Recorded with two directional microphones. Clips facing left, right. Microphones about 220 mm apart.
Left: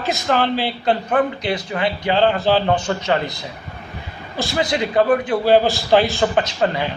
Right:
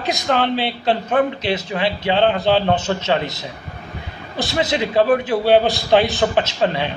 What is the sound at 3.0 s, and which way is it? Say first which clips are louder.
Speech: even; 20° right (ahead or behind).